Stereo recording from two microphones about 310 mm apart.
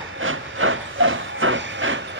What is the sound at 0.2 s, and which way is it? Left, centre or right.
Hiss, right.